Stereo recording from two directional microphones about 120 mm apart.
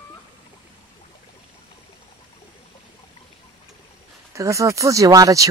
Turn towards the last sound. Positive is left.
turn(degrees=-30)  # may be behind; listen again after turning